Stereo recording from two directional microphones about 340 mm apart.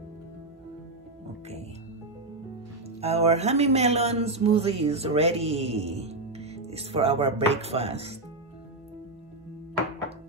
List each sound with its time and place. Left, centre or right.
3.0 s speech: centre